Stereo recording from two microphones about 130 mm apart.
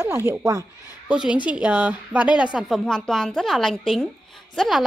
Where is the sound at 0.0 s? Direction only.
15° right (ahead or behind).